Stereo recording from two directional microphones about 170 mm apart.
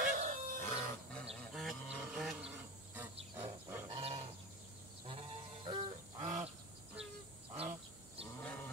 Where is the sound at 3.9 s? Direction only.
35° right (ahead or behind).